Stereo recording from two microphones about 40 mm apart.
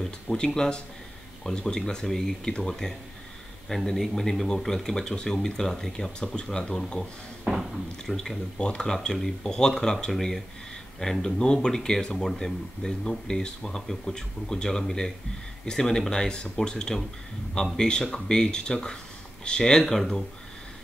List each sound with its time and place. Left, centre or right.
0.4 s speech: left
6.1 s speech: left
8.1 s speech: centre
8.5 s speech: left
11.2 s speech: left
19.9 s speech: centre